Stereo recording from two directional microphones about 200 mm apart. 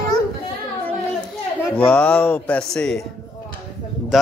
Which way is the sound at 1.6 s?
5° left (ahead or behind).